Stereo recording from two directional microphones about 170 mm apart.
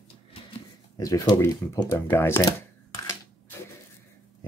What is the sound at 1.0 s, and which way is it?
Speech, 20° left (ahead or behind).